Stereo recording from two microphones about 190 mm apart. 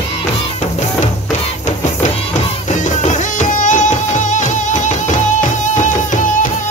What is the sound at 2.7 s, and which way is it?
Music, 40° left (ahead or behind).